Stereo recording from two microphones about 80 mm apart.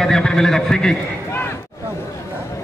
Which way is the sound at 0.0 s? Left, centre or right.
Centre.